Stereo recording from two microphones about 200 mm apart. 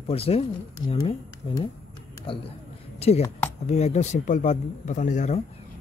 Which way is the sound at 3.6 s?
35° left (ahead or behind).